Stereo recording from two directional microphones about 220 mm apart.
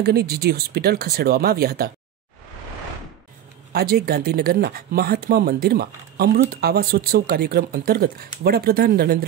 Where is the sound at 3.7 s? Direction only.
45° right (ahead or behind).